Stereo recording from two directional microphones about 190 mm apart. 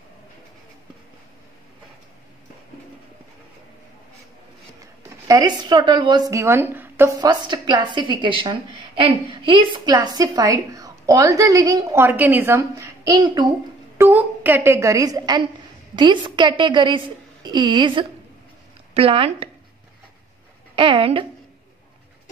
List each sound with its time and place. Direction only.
5.3 s a woman's voice: 20° right (ahead or behind)
13.9 s a woman's voice: 10° right (ahead or behind); by 19.5 s 30° right (ahead or behind)
20.7 s speech: 25° right (ahead or behind)